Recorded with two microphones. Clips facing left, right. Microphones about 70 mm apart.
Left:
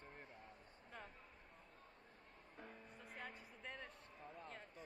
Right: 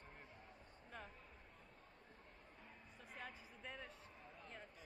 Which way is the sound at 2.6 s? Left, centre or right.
Left.